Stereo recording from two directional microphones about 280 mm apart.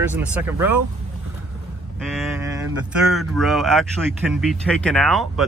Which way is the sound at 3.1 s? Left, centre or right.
Centre.